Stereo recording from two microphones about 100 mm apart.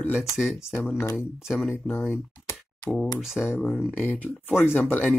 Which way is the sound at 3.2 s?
5° right (ahead or behind).